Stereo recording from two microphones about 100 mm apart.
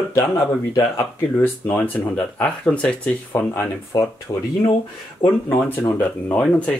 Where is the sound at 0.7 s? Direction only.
25° left (ahead or behind).